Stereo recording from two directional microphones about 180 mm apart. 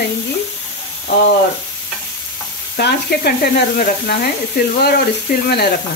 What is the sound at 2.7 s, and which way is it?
Sizzle, 60° left (ahead or behind).